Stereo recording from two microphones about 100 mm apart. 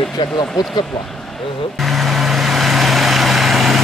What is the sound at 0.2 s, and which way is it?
Speech, 50° left (ahead or behind).